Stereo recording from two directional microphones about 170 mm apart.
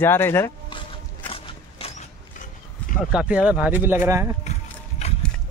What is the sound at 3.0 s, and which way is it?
Speech, 5° right (ahead or behind).